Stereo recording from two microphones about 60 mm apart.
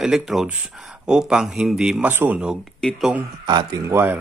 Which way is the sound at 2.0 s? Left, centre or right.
Right.